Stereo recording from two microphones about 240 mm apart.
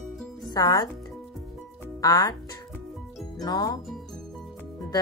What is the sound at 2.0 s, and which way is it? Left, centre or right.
Speech, centre.